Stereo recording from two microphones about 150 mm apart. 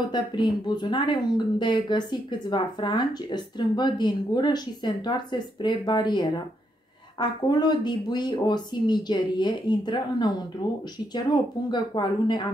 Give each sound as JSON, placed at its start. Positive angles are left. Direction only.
{"t": 0.1, "sound": "speech", "side_deg": 30}